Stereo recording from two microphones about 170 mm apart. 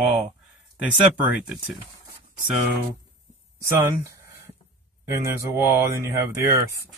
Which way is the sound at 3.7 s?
15° right (ahead or behind).